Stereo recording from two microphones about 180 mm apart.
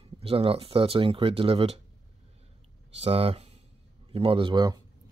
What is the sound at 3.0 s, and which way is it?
Speech, 35° right (ahead or behind).